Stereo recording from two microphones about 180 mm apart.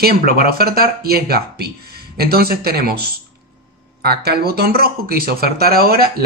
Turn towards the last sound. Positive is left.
turn(degrees=-55)  # may be behind; listen again after turning